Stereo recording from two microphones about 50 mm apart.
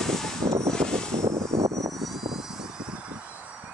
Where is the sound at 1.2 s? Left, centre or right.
Right.